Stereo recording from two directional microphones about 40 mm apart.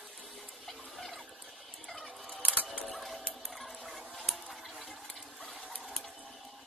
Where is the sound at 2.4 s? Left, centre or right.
Right.